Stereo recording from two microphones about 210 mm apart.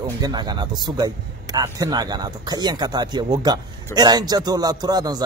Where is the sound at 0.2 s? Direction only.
20° right (ahead or behind).